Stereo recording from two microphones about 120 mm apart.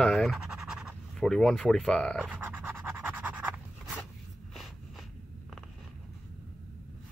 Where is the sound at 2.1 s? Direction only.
10° right (ahead or behind).